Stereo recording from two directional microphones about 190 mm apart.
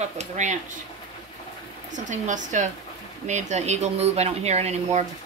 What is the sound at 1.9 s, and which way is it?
Speech, 40° right (ahead or behind).